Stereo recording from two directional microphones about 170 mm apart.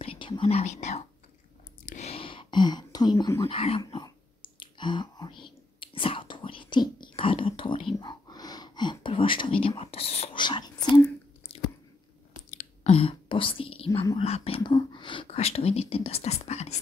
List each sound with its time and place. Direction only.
0.0 s speech: 30° left (ahead or behind)
1.9 s a sound: 40° left (ahead or behind); by 3.4 s 20° left (ahead or behind)
3.4 s speech: 35° left (ahead or behind)
4.6 s whispering: 30° left (ahead or behind)
12.4 s whispering: 45° left (ahead or behind)